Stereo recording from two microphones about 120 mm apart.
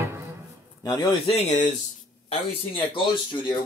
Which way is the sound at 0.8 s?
35° left (ahead or behind).